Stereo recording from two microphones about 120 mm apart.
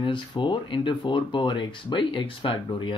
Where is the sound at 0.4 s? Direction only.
40° left (ahead or behind).